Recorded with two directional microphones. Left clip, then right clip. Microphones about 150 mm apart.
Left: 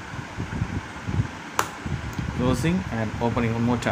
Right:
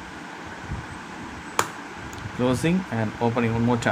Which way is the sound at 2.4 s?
15° right (ahead or behind).